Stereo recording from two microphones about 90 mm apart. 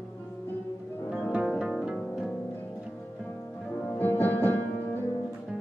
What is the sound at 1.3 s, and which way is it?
Music, 5° right (ahead or behind).